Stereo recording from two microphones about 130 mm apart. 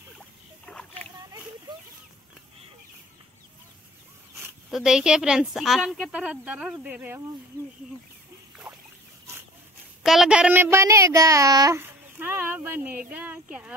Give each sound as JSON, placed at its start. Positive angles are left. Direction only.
{"t": 0.7, "sound": "rowboat", "side_deg": 10}
{"t": 4.4, "sound": "speech", "side_deg": 0}
{"t": 8.6, "sound": "rowboat", "side_deg": -15}
{"t": 10.0, "sound": "a child's voice", "side_deg": -5}
{"t": 11.8, "sound": "speech", "side_deg": -15}